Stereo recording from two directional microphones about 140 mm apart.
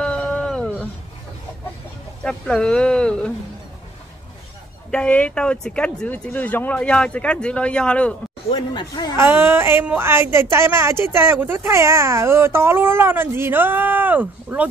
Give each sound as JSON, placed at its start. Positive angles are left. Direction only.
{"t": 0.0, "sound": "a sound", "side_deg": 5}
{"t": 2.2, "sound": "speech", "side_deg": 5}
{"t": 4.9, "sound": "speech", "side_deg": 10}
{"t": 8.5, "sound": "speech", "side_deg": 35}
{"t": 9.1, "sound": "speech", "side_deg": -15}